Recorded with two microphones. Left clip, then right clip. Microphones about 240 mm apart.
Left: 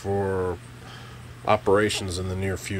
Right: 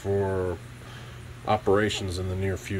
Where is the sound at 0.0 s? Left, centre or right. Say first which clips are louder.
Left 1 dB; centre.